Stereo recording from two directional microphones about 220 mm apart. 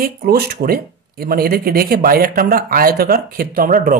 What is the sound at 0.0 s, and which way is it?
Speech, 45° right (ahead or behind).